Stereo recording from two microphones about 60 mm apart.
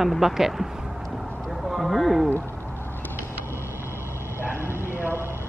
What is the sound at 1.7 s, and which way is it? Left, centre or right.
Speech, centre.